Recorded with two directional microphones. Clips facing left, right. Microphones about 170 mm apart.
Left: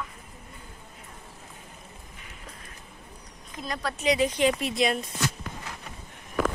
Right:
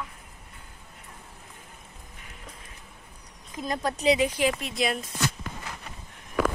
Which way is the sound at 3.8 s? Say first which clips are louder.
Right 3 dB; 40° right (ahead or behind).